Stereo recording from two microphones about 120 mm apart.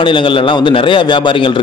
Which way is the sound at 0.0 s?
45° left (ahead or behind).